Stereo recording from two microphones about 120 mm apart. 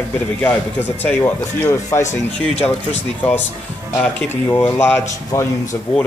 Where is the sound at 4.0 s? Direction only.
15° left (ahead or behind).